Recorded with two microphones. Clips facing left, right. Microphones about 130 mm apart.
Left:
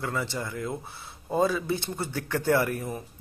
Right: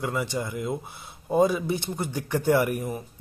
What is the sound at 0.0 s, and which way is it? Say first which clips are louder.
Speech: right 3 dB; 15° right (ahead or behind).